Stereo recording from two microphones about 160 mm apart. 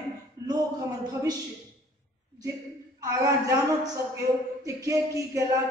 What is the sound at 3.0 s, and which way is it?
Speech, 20° right (ahead or behind).